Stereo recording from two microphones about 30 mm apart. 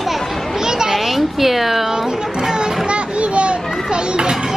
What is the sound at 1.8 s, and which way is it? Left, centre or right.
Music, centre.